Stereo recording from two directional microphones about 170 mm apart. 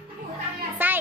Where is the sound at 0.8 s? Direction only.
10° right (ahead or behind).